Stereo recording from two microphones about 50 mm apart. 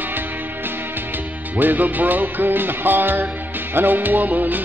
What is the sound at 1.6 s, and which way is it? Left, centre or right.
Music, right.